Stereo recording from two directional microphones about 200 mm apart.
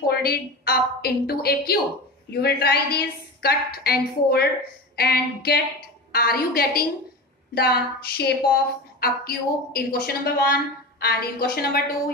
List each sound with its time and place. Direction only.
0.0 s a woman's voice: 50° left (ahead or behind)